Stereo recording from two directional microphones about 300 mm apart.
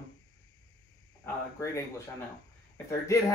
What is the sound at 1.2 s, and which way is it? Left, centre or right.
Speech, centre.